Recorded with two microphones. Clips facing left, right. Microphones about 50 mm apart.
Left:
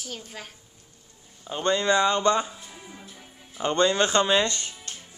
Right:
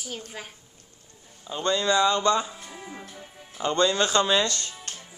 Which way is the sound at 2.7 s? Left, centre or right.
Right.